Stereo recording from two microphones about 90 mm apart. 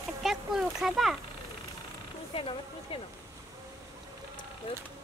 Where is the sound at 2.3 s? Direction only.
90° left.